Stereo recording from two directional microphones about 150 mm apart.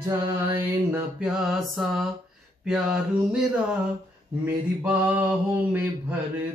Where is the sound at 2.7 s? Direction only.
5° right (ahead or behind).